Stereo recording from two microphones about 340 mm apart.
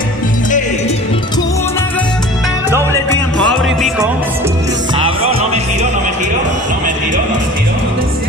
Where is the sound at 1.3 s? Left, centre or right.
Centre.